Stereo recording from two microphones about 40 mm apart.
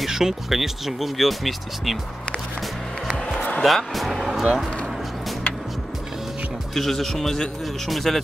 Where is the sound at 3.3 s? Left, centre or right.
Left.